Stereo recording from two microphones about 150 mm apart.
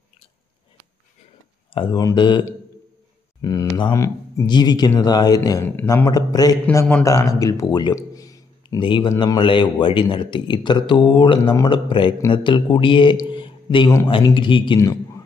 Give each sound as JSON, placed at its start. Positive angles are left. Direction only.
{"t": 1.7, "sound": "a man's voice", "side_deg": 35}
{"t": 3.4, "sound": "a man's voice", "side_deg": 25}